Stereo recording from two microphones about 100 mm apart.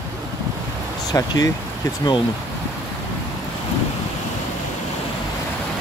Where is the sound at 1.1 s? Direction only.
35° left (ahead or behind).